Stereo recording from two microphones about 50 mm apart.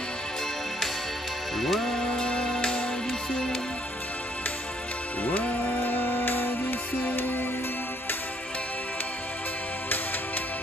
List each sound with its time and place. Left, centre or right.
1.6 s music: centre
2.0 s music: centre
5.2 s music: left